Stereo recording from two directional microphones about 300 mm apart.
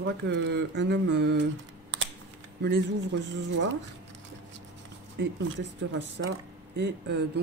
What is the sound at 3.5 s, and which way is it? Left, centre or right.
Speech, right.